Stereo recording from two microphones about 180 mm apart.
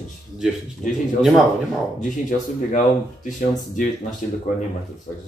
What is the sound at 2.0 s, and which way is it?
Speech, 45° left (ahead or behind).